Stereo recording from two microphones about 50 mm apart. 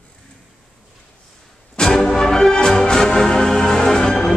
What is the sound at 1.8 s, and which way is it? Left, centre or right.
Music, centre.